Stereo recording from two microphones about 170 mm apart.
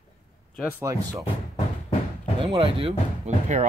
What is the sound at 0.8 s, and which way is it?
Speech, 20° right (ahead or behind).